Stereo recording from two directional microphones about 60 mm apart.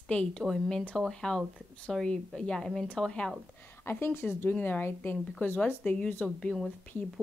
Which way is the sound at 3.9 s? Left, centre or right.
Left.